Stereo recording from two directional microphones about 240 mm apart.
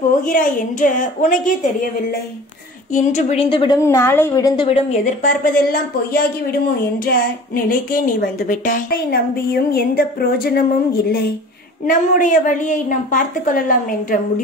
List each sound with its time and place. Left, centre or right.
0.2 s a woman's voice: left
2.9 s a woman's voice: left; by 4.6 s centre
4.6 s a woman's voice: left